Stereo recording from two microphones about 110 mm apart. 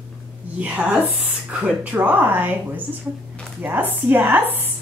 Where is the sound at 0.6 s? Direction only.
15° right (ahead or behind).